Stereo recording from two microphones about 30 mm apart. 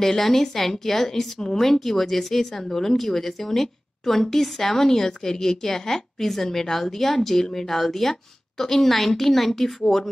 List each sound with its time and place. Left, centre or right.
0.0 s a woman's voice: centre
1.4 s speech: centre
1.7 s a woman's voice: centre